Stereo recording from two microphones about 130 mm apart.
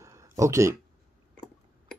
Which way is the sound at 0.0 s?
25° right (ahead or behind).